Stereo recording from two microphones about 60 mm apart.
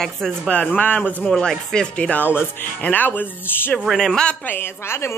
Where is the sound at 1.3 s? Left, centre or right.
Centre.